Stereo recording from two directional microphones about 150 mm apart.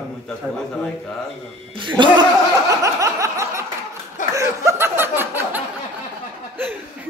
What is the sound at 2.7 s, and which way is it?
Snicker, 20° right (ahead or behind).